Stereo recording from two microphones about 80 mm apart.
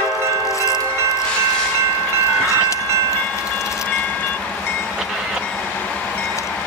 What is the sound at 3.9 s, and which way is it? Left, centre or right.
Train, centre.